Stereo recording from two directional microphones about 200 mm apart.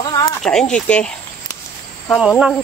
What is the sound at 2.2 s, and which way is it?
Speech, centre (ahead or behind).